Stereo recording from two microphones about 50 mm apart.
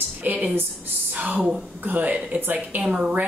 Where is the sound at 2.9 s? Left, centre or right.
Centre.